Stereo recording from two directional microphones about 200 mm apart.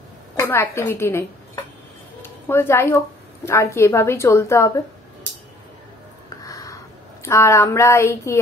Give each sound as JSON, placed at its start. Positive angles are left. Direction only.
{"t": 0.4, "sound": "a woman's voice", "side_deg": 15}
{"t": 6.4, "sound": "a sound", "side_deg": 15}
{"t": 7.2, "sound": "a woman's voice", "side_deg": 15}